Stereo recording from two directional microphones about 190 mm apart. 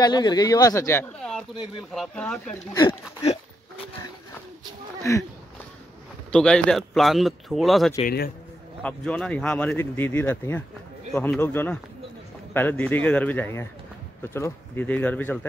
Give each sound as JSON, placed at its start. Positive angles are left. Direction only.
{"t": 0.0, "sound": "speech", "side_deg": 20}
{"t": 2.0, "sound": "speech", "side_deg": 5}
{"t": 2.7, "sound": "speech", "side_deg": 25}
{"t": 5.1, "sound": "speech", "side_deg": 15}
{"t": 6.3, "sound": "speech", "side_deg": 5}
{"t": 8.0, "sound": "a man's voice", "side_deg": 55}
{"t": 8.8, "sound": "speech", "side_deg": 5}